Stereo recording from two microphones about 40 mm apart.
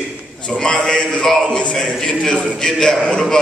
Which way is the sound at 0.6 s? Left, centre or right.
Centre.